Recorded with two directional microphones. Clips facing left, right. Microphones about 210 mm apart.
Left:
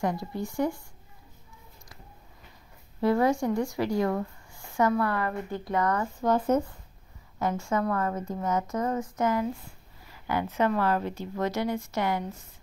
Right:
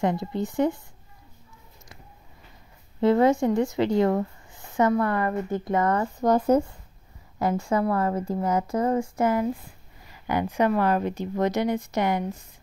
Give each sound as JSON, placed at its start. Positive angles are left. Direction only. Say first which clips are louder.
{"t": 0.0, "sound": "speech", "louder": "right 4 dB", "side_deg": -25}
{"t": 3.0, "sound": "speech", "louder": "right 4 dB", "side_deg": -20}
{"t": 6.2, "sound": "a woman's voice", "louder": "right 4 dB", "side_deg": -40}
{"t": 10.2, "sound": "speech", "louder": "right 3 dB", "side_deg": -15}